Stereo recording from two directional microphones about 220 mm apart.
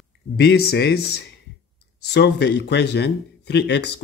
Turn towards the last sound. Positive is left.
turn(degrees=50)  # may be behind; listen again after turning